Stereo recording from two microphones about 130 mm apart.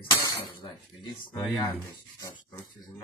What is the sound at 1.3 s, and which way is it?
Speech, 30° left (ahead or behind).